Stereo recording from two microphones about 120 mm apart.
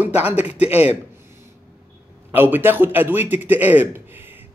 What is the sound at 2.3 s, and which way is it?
Speech, 15° right (ahead or behind).